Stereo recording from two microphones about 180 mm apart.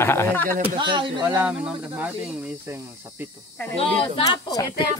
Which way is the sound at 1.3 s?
10° right (ahead or behind).